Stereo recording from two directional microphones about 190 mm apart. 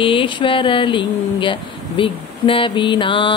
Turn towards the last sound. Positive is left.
turn(degrees=25)  # may be behind; listen again after turning